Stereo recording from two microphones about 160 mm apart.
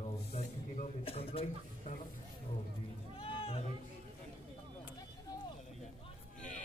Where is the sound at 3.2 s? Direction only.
35° left (ahead or behind).